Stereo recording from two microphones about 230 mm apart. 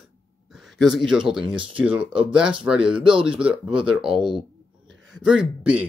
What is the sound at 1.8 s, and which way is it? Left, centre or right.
Speech, centre.